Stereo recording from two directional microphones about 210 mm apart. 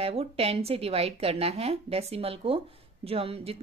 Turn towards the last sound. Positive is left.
turn(degrees=-25)  # may be behind; listen again after turning